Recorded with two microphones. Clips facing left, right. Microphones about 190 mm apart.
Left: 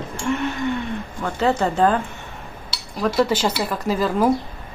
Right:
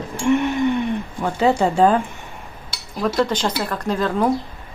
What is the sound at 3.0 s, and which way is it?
Speech, 5° left (ahead or behind).